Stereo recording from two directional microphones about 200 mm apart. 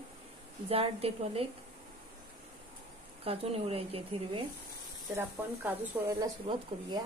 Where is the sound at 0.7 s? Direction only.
30° right (ahead or behind).